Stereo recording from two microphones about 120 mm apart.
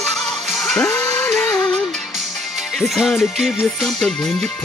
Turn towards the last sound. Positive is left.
turn(degrees=0)  # may be behind; listen again after turning